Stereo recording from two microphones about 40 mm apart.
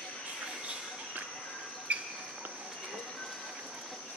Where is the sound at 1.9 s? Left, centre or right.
Right.